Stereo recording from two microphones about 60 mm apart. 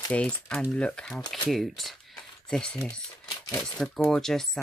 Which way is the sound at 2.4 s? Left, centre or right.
Centre.